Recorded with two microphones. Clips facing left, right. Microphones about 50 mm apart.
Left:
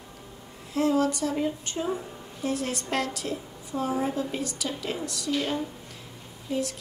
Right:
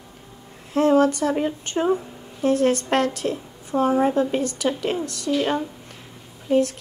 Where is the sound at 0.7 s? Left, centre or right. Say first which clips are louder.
Right 7 dB; right.